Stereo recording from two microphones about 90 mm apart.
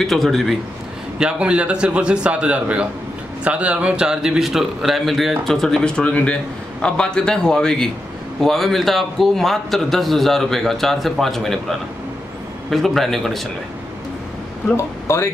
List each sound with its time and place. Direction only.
0.0 s a man's voice: 5° left (ahead or behind)
1.2 s a man's voice: 10° right (ahead or behind)
12.6 s a man's voice: centre (ahead or behind)
14.8 s speech: 30° left (ahead or behind)